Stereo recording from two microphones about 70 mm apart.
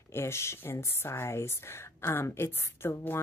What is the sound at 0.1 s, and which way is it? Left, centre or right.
Speech, left.